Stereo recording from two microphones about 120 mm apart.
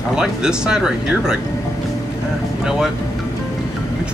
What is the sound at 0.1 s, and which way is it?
Speech, 5° right (ahead or behind).